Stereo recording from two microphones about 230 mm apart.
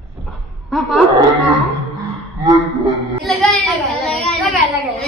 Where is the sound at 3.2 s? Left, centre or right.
Centre.